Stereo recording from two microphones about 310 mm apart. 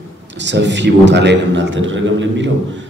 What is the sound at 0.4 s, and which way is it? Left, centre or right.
A man's voice, right.